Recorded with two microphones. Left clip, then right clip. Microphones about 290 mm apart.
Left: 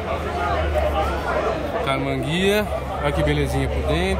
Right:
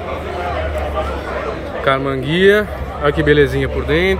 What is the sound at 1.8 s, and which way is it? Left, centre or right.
A man's voice, centre.